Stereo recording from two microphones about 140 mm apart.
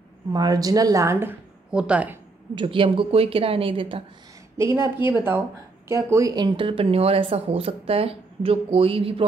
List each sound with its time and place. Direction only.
0.3 s speech: 30° right (ahead or behind); by 2.1 s 10° right (ahead or behind)
2.5 s speech: 40° right (ahead or behind)
4.6 s speech: 20° right (ahead or behind); by 9.2 s 40° right (ahead or behind)